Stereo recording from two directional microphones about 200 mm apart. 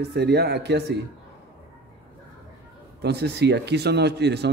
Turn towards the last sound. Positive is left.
turn(degrees=-55)  # may be behind; listen again after turning